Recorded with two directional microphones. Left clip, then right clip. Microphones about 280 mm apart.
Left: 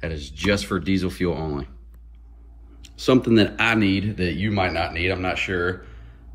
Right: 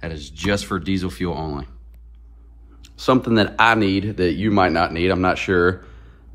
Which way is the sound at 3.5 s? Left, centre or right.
Centre.